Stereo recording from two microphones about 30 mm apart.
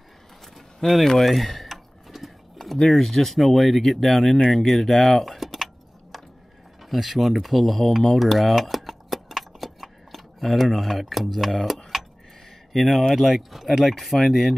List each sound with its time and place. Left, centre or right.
0.8 s speech: left
1.2 s a sound: centre
2.8 s speech: centre
5.4 s keys jangling: centre
6.8 s speech: centre
8.1 s a sound: centre
12.7 s speech: centre